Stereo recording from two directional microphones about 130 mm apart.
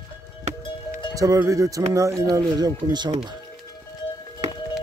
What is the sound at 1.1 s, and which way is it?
Speech, 25° right (ahead or behind).